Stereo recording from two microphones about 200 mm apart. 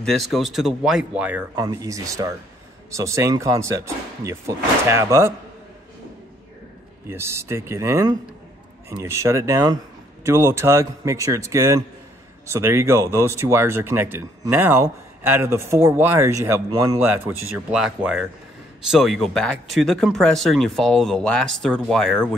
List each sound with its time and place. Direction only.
0.0 s speech: centre (ahead or behind)
1.5 s speech: 15° right (ahead or behind)
7.1 s speech: 15° right (ahead or behind); by 22.3 s 5° left (ahead or behind)